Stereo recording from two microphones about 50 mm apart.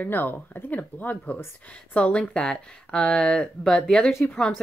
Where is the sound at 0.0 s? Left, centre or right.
Left.